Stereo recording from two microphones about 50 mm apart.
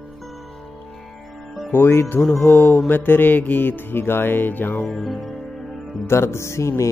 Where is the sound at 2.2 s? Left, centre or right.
Centre.